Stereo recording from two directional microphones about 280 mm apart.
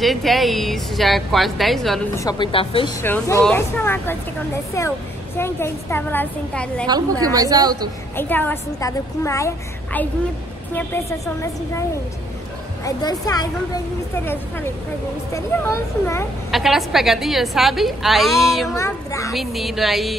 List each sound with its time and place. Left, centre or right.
0.0 s a woman's voice: centre
2.2 s a woman's voice: centre
3.0 s a woman's voice: centre
5.4 s a woman's voice: centre
6.9 s a woman's voice: centre
8.2 s a woman's voice: centre
10.7 s a woman's voice: centre
12.8 s a woman's voice: centre
16.4 s a woman's voice: centre
18.8 s a woman's voice: centre
19.3 s a woman's voice: centre